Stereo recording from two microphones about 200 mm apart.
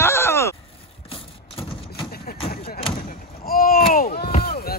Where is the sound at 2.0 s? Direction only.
50° left (ahead or behind).